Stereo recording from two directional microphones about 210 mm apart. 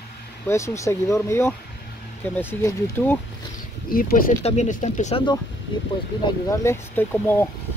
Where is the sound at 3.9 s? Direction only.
45° left (ahead or behind).